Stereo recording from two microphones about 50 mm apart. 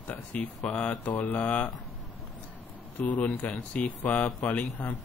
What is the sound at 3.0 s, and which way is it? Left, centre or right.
Speech, left.